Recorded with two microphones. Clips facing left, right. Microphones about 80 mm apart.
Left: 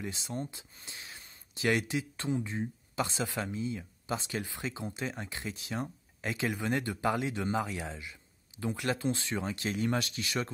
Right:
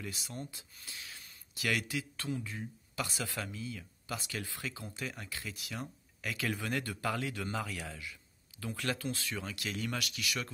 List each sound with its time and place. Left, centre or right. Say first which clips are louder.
0.0 s speech: left 5 dB; left